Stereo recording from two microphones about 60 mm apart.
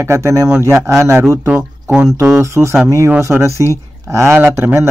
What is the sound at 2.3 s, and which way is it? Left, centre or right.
Speech, right.